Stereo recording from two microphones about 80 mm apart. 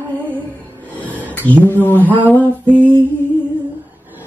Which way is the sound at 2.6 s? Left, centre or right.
Right.